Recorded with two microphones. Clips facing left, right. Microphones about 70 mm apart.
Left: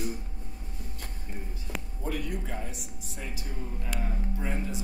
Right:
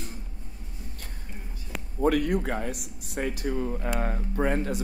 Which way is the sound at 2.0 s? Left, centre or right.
Right.